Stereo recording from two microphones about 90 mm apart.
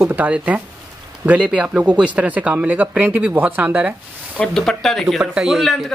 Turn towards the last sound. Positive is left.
turn(degrees=0)  # may be behind; listen again after turning